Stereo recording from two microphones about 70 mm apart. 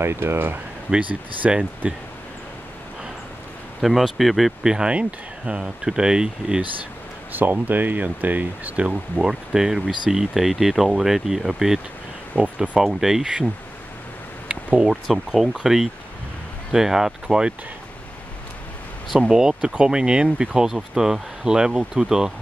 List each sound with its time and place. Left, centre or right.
0.0 s speech: right
0.8 s speech: centre
3.8 s speech: centre
4.7 s speech: centre
7.3 s speech: right; by 13.5 s centre
14.5 s a sound: right
15.0 s speech: centre
19.1 s speech: centre